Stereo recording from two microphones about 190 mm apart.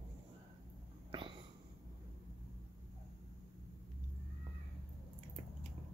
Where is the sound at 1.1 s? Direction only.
25° right (ahead or behind).